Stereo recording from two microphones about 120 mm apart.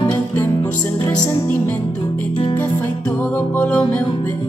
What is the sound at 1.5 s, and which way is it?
Music, 15° left (ahead or behind).